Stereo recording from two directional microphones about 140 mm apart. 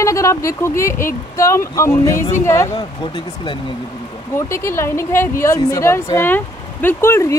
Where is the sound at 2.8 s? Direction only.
35° left (ahead or behind).